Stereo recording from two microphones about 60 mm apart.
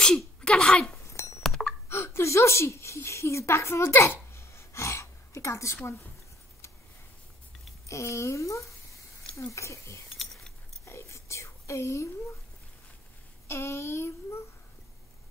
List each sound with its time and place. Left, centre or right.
0.4 s speech: centre
1.0 s a sound: left
1.4 s a sound: centre
1.9 s speech: left
7.9 s speech: left
9.5 s child singing: left
10.0 s cutlery: centre
10.9 s whispering: left
13.5 s child singing: left